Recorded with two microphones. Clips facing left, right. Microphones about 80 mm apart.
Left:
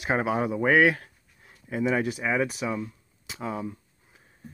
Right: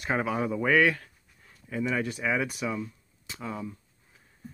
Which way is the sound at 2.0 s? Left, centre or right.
Centre.